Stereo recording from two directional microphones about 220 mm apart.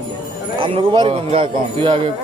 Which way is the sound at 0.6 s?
25° right (ahead or behind).